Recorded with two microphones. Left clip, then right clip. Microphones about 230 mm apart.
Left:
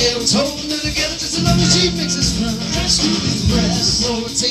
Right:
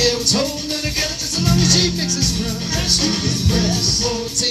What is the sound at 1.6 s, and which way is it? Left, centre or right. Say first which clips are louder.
Music: even; right.